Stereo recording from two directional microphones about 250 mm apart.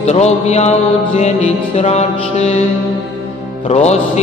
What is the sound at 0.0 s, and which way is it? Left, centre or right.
Music, left.